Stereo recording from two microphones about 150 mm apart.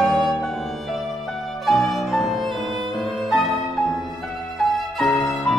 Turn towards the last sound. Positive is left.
turn(degrees=5)  # may be behind; listen again after turning